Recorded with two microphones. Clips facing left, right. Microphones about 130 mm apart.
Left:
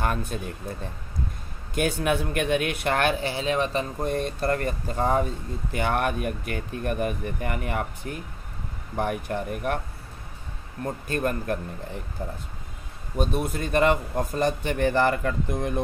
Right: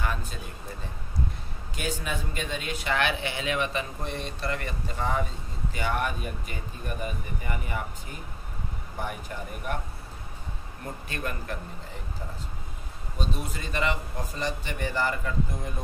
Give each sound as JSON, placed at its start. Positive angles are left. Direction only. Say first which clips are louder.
{"t": 0.0, "sound": "speech", "louder": "left 5 dB", "side_deg": 55}
{"t": 1.8, "sound": "speech", "louder": "left 8 dB", "side_deg": 60}
{"t": 8.9, "sound": "speech", "louder": "left 9 dB", "side_deg": 55}
{"t": 11.1, "sound": "speech", "louder": "left 9 dB", "side_deg": 45}
{"t": 13.2, "sound": "speech", "louder": "left 8 dB", "side_deg": 55}